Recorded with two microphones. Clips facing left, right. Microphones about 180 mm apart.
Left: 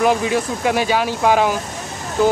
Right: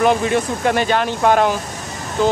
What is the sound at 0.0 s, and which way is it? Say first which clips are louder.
Speech: right 1 dB; 5° left (ahead or behind).